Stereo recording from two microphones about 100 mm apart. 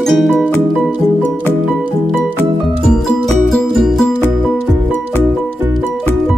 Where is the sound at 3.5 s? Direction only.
5° left (ahead or behind).